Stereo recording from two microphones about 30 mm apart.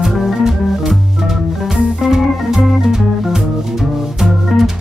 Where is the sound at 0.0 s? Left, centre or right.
Centre.